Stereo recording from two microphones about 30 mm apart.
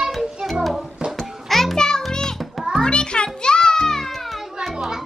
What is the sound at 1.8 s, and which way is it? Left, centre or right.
Music, left.